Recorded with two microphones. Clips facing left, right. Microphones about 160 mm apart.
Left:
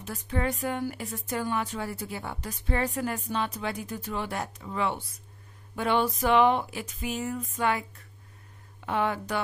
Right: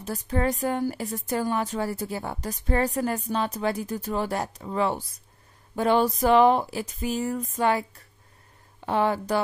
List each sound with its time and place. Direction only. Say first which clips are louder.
0.0 s speech: right 4 dB; 40° right (ahead or behind)
8.8 s speech: right 4 dB; 35° right (ahead or behind)